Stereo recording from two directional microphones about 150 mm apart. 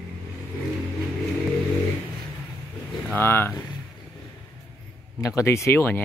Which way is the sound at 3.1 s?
15° left (ahead or behind).